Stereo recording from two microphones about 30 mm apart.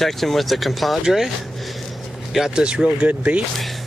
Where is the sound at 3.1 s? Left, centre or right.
Right.